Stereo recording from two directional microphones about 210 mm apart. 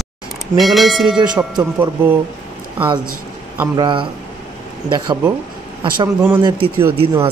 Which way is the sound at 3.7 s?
20° right (ahead or behind).